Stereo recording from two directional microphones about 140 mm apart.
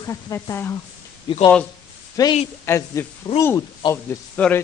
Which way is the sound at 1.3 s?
35° left (ahead or behind).